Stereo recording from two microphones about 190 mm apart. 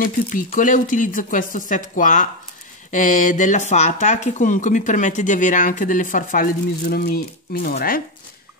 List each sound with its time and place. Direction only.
0.0 s speech: 45° left (ahead or behind)